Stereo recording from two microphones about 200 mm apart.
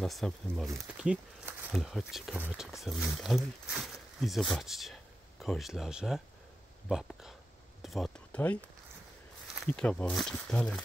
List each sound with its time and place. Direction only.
0.0 s speech: centre (ahead or behind)
7.8 s a sound: centre (ahead or behind)
9.6 s speech: 5° left (ahead or behind)